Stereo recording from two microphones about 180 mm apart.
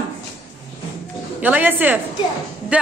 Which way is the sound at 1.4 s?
10° right (ahead or behind).